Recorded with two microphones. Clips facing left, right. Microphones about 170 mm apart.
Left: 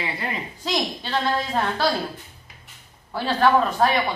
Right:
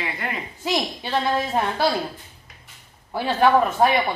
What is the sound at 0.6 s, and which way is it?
A man's voice, 10° right (ahead or behind).